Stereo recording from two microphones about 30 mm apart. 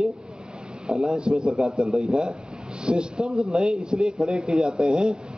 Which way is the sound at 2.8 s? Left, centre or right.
Right.